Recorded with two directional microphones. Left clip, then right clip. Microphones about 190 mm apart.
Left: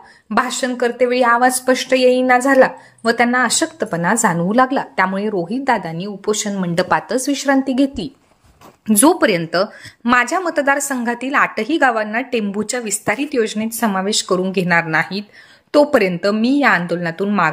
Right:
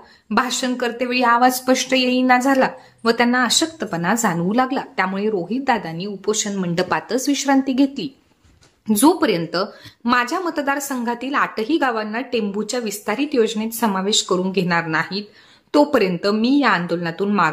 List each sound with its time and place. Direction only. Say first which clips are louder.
0.3 s a woman's voice: left 2 dB; 15° left (ahead or behind)